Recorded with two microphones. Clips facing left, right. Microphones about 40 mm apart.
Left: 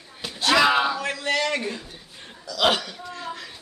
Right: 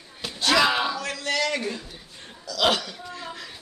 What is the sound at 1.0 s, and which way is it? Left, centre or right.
A man's voice, left.